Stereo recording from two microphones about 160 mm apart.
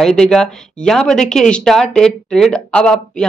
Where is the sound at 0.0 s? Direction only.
5° left (ahead or behind).